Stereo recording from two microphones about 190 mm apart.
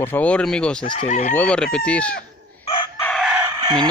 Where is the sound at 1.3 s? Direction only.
5° left (ahead or behind).